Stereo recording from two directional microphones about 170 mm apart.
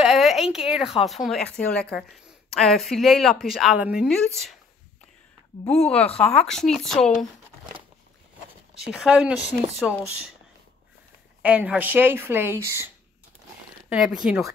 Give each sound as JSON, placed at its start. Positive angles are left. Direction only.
{"t": 0.0, "sound": "a sound", "side_deg": 0}
{"t": 1.0, "sound": "speech", "side_deg": 0}
{"t": 5.7, "sound": "a woman's voice", "side_deg": 5}
{"t": 5.9, "sound": "speech", "side_deg": 35}
{"t": 6.4, "sound": "speech", "side_deg": 5}
{"t": 8.9, "sound": "speech", "side_deg": -5}
{"t": 11.4, "sound": "speech", "side_deg": -10}